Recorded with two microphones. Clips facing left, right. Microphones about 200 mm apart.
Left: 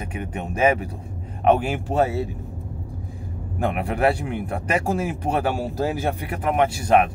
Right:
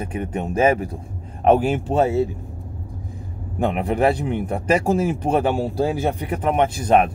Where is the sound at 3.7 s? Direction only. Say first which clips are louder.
Right 2 dB; 30° right (ahead or behind).